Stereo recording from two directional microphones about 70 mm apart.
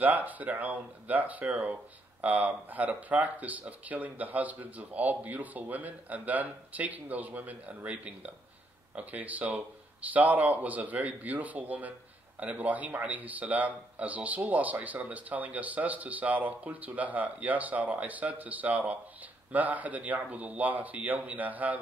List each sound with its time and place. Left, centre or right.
0.0 s speech: right